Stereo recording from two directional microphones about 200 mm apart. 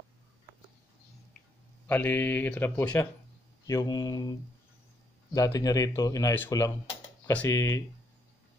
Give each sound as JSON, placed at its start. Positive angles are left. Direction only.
{"t": 1.9, "sound": "speech", "side_deg": 10}
{"t": 3.6, "sound": "mantra", "side_deg": 20}
{"t": 5.3, "sound": "speech", "side_deg": 20}